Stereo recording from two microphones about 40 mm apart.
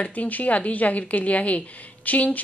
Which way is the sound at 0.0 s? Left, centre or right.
Left.